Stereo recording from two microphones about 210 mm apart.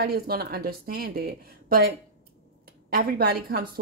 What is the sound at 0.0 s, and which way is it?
Speech, 45° right (ahead or behind).